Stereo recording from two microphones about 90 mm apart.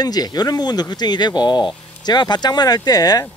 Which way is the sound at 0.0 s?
45° left (ahead or behind).